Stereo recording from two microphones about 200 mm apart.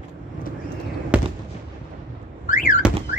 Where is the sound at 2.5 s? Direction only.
40° left (ahead or behind).